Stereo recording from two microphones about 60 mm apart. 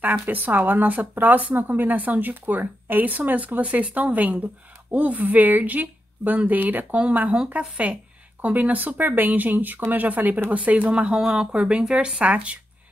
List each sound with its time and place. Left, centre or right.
0.0 s speech: right